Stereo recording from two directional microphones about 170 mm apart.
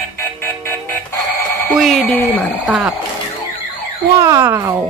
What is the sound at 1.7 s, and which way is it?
Speech, centre (ahead or behind).